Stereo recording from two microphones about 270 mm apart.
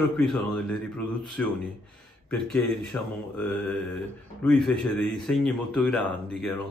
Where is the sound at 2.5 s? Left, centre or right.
Centre.